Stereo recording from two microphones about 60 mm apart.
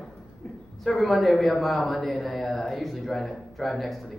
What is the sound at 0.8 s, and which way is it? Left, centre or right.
Speech, centre.